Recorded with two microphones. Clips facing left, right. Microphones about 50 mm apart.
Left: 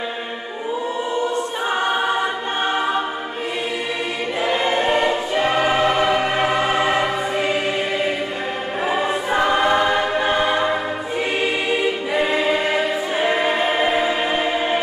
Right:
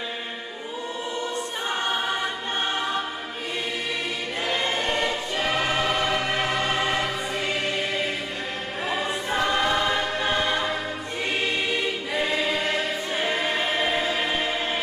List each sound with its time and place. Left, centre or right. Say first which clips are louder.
1.1 s choir: left 7 dB; centre
4.5 s choir: left 7 dB; centre
8.8 s choir: left 6 dB; centre